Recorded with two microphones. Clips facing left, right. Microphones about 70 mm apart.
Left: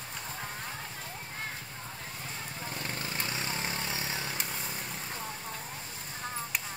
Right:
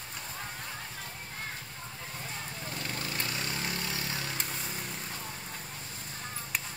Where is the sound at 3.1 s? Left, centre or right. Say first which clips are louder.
Left 1 dB; left.